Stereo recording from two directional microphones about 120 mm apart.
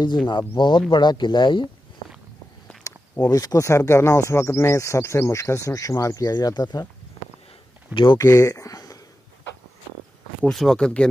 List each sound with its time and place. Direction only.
0.0 s speech: 40° left (ahead or behind)
2.8 s speech: 30° left (ahead or behind)
7.9 s speech: 45° left (ahead or behind)
8.2 s speech: 25° left (ahead or behind)
10.5 s speech: 5° left (ahead or behind)